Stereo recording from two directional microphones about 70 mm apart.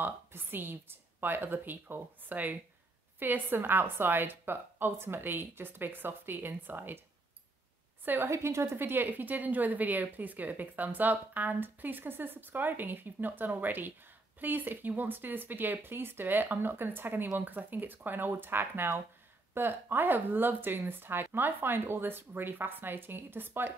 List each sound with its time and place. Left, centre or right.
0.0 s a woman's voice: right
8.0 s a woman's voice: right
8.3 s a woman's voice: right